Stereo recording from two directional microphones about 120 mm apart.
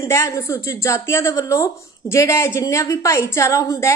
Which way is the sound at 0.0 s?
25° left (ahead or behind).